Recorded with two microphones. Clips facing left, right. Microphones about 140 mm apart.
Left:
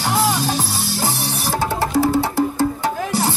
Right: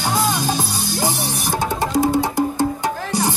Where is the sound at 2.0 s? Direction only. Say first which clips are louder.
Even; 15° right (ahead or behind).